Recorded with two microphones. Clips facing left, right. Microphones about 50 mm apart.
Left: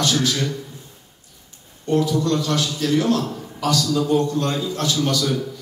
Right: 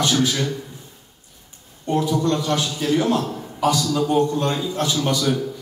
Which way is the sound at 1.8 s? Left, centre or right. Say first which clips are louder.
Left 1 dB; right.